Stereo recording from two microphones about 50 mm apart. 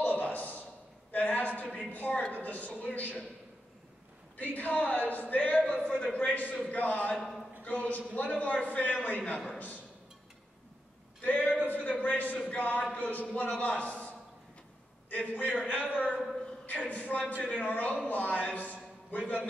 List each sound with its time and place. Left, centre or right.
0.0 s a sound: left
1.9 s speech: left
4.4 s a man's voice: left
7.2 s a man's voice: centre
7.6 s a man's voice: left
11.1 s a sound: left
12.5 s a man's voice: left